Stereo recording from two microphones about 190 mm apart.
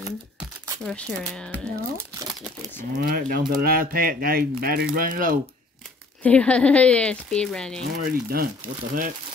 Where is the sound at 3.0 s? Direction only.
50° right (ahead or behind).